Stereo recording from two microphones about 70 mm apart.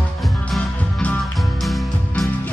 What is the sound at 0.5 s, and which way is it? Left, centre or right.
Music, left.